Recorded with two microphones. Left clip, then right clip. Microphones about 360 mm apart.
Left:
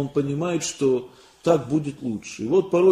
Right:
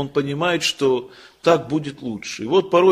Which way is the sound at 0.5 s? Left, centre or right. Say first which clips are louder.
Right 6 dB; right.